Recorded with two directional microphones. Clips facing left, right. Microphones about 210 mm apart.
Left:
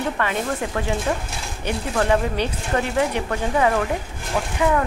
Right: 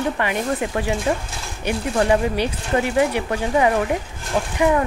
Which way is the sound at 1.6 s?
15° right (ahead or behind).